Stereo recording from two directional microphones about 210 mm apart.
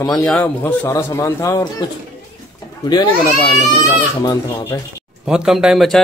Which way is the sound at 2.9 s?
20° left (ahead or behind).